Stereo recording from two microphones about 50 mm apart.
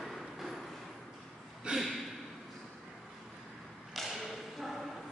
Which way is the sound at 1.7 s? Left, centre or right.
Centre.